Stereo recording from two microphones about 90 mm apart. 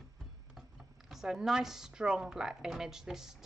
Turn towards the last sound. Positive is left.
turn(degrees=-5)  # may be behind; listen again after turning